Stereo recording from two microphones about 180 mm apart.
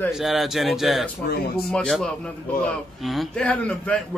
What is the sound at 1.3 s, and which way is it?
Speech, 60° left (ahead or behind).